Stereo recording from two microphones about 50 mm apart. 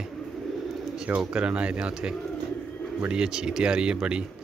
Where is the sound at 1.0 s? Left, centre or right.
Right.